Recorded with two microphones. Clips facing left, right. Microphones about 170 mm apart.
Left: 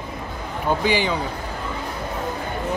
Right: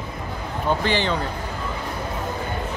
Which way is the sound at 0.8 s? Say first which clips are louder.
Left 1 dB; 10° left (ahead or behind).